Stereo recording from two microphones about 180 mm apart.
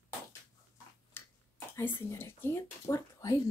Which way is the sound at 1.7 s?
15° left (ahead or behind).